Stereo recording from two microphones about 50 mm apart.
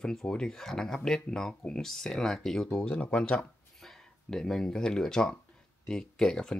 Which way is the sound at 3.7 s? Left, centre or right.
Centre.